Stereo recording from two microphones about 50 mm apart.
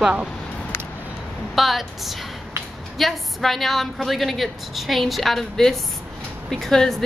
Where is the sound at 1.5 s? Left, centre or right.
Centre.